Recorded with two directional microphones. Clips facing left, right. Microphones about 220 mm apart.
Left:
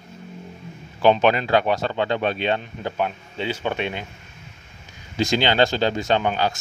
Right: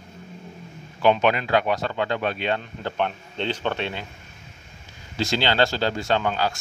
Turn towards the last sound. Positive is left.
turn(degrees=20)  # may be behind; listen again after turning